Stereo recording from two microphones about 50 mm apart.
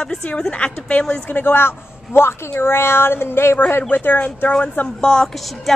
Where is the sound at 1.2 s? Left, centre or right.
Left.